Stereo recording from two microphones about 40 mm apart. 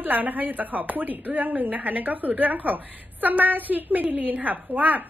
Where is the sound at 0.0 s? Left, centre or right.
Right.